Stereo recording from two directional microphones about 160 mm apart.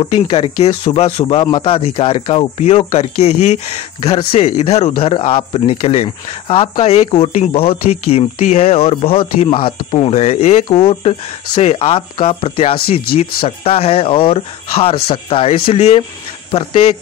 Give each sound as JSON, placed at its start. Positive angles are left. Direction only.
{"t": 0.0, "sound": "speech", "side_deg": 35}